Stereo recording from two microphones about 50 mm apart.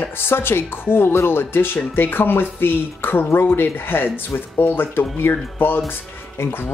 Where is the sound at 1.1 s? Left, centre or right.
Left.